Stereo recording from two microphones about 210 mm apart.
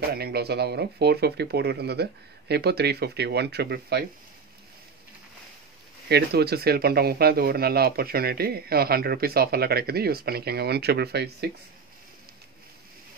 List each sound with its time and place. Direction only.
0.1 s speech: 50° right (ahead or behind)
6.0 s speech: 50° right (ahead or behind)